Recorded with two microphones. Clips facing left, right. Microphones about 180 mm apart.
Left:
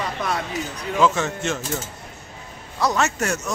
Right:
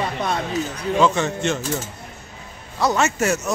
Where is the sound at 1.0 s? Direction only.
Centre (ahead or behind).